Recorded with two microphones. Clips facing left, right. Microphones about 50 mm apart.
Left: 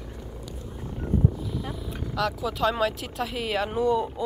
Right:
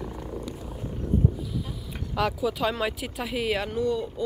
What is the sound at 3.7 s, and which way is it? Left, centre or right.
Speech, centre.